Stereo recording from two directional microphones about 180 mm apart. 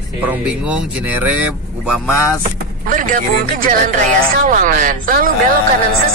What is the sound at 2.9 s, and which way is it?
Speech, 45° right (ahead or behind).